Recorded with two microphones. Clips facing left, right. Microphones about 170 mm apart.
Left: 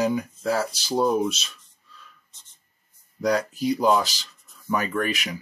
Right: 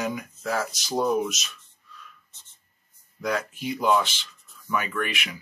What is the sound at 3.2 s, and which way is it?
Speech, 35° left (ahead or behind).